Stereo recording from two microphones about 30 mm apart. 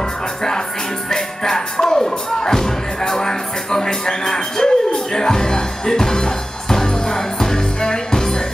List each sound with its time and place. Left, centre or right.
1.1 s music: centre